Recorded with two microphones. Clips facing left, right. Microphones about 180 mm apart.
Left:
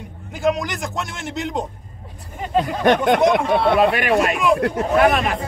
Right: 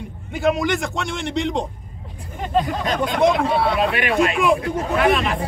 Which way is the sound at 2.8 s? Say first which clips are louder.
Left 7 dB; 70° left (ahead or behind).